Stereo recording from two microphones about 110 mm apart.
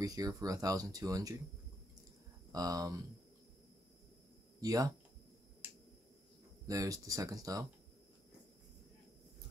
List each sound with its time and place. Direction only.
0.0 s speech: 35° right (ahead or behind)
2.5 s speech: 35° right (ahead or behind)
4.6 s speech: 35° right (ahead or behind)
6.7 s speech: 30° right (ahead or behind)